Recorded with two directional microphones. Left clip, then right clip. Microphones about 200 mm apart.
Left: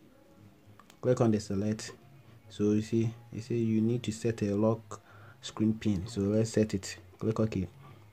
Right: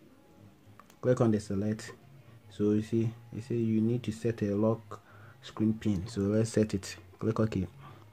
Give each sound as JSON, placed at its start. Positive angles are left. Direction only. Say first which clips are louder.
{"t": 1.0, "sound": "speech", "louder": "even", "side_deg": 0}